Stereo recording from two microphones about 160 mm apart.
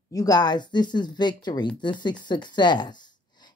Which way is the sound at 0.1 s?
25° left (ahead or behind).